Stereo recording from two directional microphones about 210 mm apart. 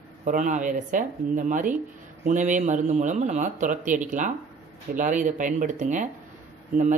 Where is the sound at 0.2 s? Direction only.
35° right (ahead or behind).